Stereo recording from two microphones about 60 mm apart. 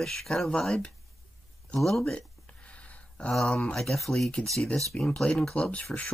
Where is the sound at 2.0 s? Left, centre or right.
Centre.